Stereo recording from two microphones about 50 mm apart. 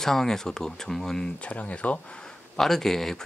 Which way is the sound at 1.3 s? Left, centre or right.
Left.